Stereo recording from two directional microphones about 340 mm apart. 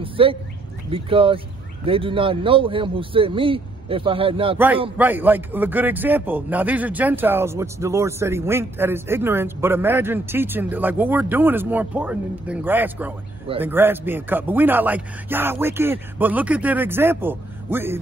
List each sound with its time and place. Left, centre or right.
0.0 s speech: centre
4.9 s a man's voice: centre